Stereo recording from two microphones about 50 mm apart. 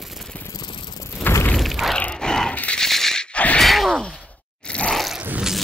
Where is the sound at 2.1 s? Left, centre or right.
Centre.